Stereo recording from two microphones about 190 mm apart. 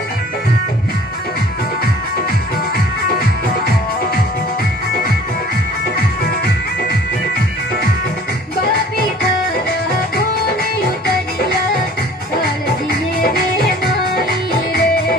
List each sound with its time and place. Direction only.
13.2 s music: 55° left (ahead or behind)